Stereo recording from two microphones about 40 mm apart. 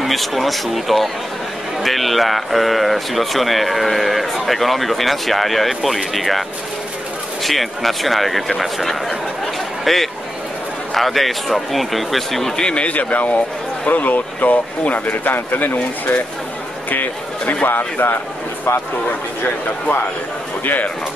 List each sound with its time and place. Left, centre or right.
0.0 s speech: centre
7.4 s speech: centre
12.6 s speech: left
12.9 s speech: left
16.9 s a man's voice: left
20.6 s speech: left